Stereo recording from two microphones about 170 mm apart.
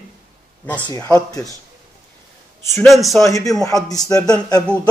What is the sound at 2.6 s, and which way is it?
Speech, 15° left (ahead or behind).